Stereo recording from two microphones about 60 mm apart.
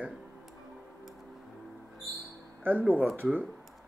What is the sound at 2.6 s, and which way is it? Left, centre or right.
Speech, right.